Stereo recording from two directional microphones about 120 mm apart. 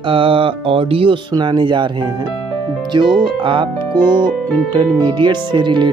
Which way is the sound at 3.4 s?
40° right (ahead or behind).